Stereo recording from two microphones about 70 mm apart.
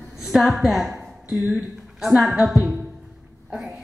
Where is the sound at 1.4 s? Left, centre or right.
Centre.